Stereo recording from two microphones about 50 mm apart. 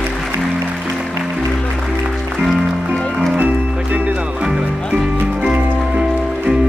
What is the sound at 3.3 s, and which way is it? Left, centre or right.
Music, right.